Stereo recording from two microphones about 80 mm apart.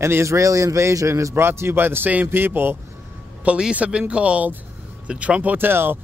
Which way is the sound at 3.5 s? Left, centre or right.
Centre.